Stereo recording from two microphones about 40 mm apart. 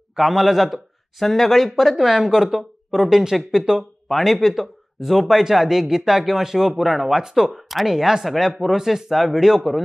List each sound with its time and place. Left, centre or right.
0.1 s speech: centre
4.1 s speech: centre